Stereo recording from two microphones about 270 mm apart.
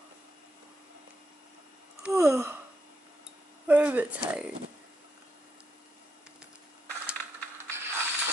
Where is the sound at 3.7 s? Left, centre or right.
Centre.